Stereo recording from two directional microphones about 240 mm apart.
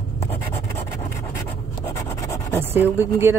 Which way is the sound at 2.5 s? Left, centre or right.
Centre.